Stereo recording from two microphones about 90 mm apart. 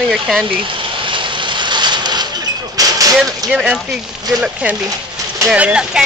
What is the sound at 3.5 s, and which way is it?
Speech, 10° right (ahead or behind).